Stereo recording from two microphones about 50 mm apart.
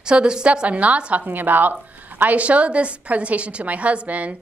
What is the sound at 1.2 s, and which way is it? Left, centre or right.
A woman's voice, right.